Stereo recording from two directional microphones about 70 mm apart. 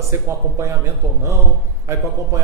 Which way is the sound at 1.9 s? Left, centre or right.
Right.